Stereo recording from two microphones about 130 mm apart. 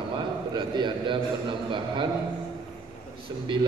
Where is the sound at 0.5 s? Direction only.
35° right (ahead or behind).